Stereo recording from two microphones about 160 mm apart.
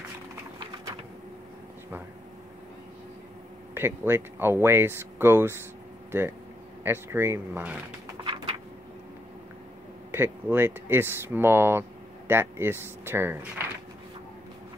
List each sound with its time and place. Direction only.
3.7 s speech: 15° right (ahead or behind)
6.8 s speech: 15° right (ahead or behind)
8.2 s a sound: 25° right (ahead or behind)
10.1 s speech: 15° right (ahead or behind)